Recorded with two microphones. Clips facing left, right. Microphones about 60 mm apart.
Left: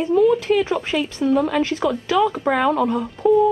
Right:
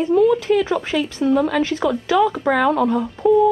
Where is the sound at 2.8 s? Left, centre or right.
Centre.